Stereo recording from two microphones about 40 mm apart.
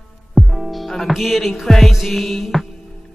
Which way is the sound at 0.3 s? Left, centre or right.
Centre.